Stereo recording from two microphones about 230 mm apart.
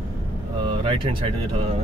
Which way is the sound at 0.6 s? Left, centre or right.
Right.